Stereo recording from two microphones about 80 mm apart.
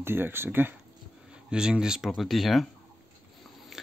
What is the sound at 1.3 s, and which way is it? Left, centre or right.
Speech, centre.